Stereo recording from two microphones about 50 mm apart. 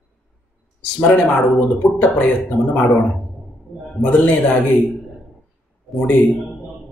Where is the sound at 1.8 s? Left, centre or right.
Left.